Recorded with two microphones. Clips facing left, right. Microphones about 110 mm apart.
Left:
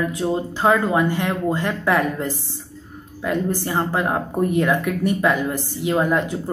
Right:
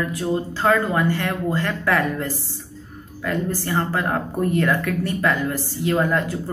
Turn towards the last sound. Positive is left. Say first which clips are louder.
# left 1 dB
turn(degrees=15)  # may be behind; listen again after turning